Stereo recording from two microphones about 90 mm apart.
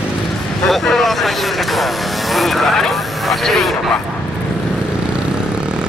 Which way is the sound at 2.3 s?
Centre (ahead or behind).